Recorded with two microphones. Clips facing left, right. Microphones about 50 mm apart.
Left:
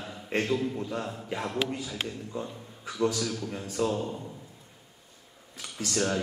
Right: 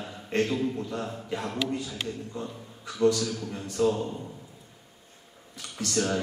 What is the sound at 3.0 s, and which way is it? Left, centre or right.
Speech, centre.